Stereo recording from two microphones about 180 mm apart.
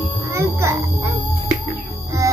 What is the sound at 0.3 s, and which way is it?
Music, 15° right (ahead or behind).